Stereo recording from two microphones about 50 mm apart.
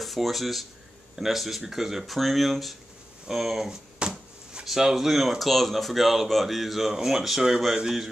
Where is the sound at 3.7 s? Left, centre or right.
Centre.